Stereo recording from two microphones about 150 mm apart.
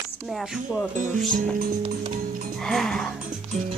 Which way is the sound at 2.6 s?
5° left (ahead or behind).